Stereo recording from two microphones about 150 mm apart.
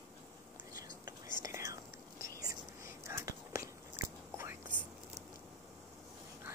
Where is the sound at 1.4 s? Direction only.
20° right (ahead or behind).